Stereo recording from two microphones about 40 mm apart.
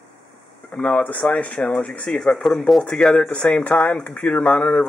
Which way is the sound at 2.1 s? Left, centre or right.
Centre.